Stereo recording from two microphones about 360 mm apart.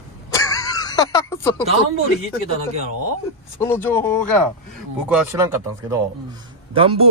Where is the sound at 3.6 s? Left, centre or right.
Centre.